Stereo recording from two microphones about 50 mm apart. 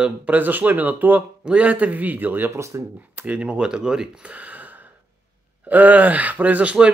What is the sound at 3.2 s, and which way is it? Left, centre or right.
Speech, right.